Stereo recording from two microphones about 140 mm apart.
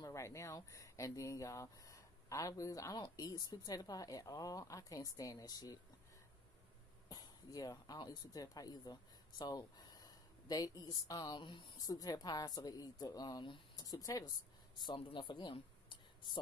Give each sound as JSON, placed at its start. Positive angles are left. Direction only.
{"t": 0.0, "sound": "speech", "side_deg": 20}
{"t": 7.1, "sound": "speech", "side_deg": 25}
{"t": 14.9, "sound": "speech", "side_deg": 40}